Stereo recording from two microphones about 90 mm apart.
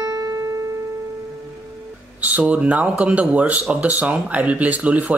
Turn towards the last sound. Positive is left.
turn(degrees=-15)  # may be behind; listen again after turning